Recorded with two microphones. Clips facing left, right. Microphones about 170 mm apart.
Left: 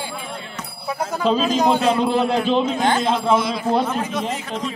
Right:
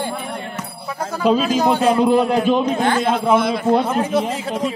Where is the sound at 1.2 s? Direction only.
10° right (ahead or behind).